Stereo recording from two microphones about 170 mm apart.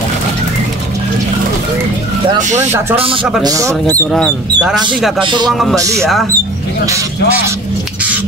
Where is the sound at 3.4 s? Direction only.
20° right (ahead or behind).